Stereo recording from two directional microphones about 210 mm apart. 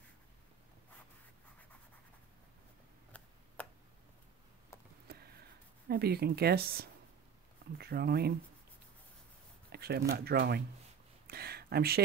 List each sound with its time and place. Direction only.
3.1 s tick-tock: 5° left (ahead or behind)
3.6 s tick: 5° left (ahead or behind)
5.1 s a sound: 50° right (ahead or behind)
5.9 s speech: 50° right (ahead or behind)
9.7 s speech: 50° right (ahead or behind)
11.2 s a sound: 50° right (ahead or behind)